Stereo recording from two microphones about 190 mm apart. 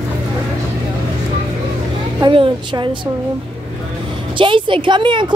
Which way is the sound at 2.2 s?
25° right (ahead or behind).